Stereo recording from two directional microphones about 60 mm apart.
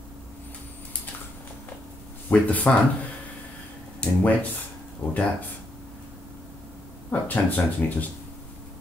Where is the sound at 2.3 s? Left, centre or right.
Left.